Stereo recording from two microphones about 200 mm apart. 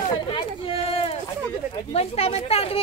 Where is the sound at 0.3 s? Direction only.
25° left (ahead or behind).